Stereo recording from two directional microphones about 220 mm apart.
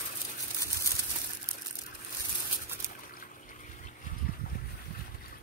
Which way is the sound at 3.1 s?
40° left (ahead or behind).